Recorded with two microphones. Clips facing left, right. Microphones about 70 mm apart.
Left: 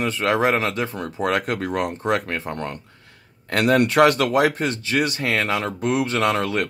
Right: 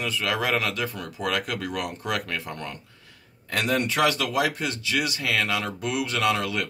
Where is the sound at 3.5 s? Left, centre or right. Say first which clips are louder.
Left 7 dB; left.